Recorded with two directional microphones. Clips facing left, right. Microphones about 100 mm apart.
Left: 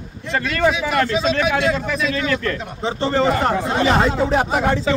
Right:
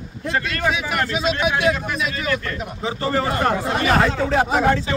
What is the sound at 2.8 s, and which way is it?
Speech, 30° left (ahead or behind).